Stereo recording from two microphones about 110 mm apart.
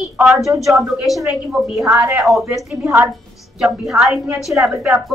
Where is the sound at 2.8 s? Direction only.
25° right (ahead or behind).